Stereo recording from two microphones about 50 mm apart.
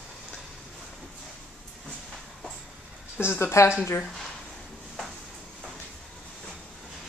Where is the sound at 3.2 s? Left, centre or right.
Left.